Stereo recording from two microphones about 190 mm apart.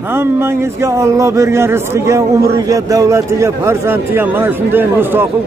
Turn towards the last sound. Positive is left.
turn(degrees=-10)  # may be behind; listen again after turning